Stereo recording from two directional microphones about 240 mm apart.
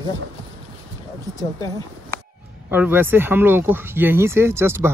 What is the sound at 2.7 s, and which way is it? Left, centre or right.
Speech, centre.